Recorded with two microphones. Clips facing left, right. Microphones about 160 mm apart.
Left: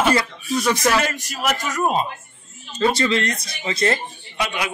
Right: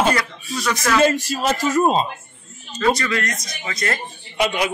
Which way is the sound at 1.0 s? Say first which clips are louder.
Right 7 dB; 30° right (ahead or behind).